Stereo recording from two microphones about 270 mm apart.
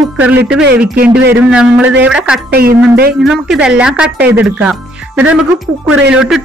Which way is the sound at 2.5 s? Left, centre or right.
Right.